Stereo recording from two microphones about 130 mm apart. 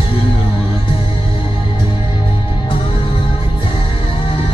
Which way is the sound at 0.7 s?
40° left (ahead or behind).